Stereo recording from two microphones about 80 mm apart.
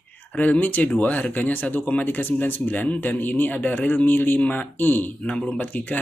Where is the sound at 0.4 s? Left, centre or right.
Left.